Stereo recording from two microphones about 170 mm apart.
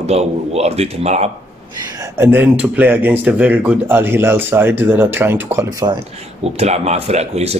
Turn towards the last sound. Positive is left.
turn(degrees=-40)  # may be behind; listen again after turning